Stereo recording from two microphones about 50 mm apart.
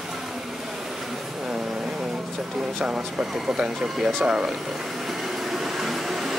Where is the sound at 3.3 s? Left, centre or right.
Centre.